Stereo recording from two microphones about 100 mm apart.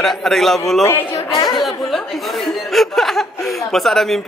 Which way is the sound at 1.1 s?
40° left (ahead or behind).